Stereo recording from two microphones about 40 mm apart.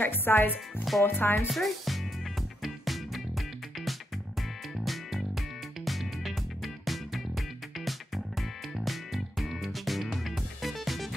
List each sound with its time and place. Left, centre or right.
0.0 s speech: left
1.5 s speech: centre
2.6 s music: centre